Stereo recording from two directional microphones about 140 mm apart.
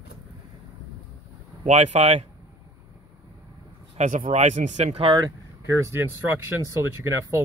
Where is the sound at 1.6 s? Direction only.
55° right (ahead or behind).